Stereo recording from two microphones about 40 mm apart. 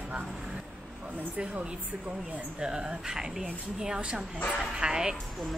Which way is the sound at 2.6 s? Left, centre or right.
Right.